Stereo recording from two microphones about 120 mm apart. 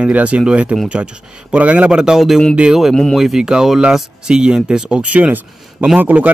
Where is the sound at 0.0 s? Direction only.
10° right (ahead or behind).